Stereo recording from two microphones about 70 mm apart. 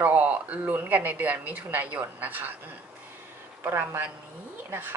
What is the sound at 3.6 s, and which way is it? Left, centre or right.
Speech, right.